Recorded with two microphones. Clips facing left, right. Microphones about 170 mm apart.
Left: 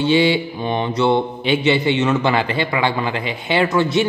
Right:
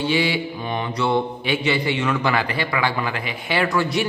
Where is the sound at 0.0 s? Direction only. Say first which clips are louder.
Left 6 dB; 25° left (ahead or behind).